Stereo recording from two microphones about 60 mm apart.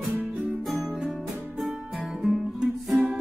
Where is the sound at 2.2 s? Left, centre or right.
Centre.